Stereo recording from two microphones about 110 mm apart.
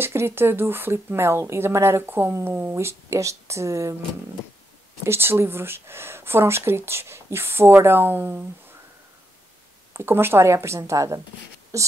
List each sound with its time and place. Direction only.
0.0 s speech: 20° right (ahead or behind)
5.0 s speech: 20° right (ahead or behind)
9.9 s speech: 20° right (ahead or behind)